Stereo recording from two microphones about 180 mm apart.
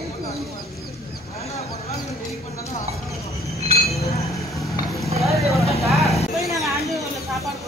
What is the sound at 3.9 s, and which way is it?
Chink, 35° left (ahead or behind).